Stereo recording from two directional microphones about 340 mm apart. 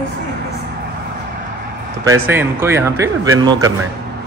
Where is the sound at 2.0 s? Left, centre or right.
Centre.